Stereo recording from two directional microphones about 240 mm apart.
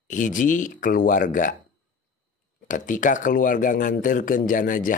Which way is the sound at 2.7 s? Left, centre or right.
Left.